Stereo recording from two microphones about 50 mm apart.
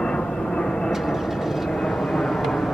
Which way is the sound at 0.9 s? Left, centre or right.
Centre.